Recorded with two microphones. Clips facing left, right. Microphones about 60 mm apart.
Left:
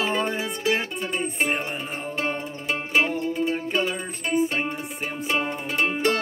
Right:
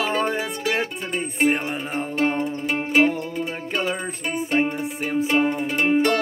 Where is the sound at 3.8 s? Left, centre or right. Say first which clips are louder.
Right 1 dB; right.